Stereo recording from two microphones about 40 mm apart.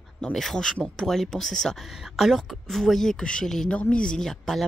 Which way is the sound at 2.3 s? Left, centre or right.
Centre.